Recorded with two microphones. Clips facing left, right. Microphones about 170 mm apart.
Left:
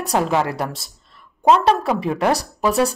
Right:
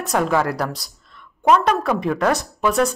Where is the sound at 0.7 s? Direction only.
30° left (ahead or behind).